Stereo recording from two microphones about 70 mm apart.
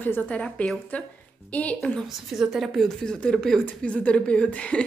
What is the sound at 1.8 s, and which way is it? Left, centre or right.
Speech, centre.